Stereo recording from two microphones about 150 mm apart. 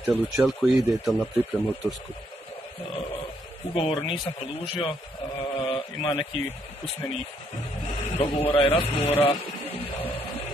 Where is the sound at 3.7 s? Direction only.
35° left (ahead or behind).